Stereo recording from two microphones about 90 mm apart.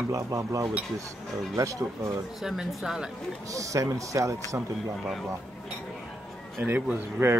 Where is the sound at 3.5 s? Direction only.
35° right (ahead or behind).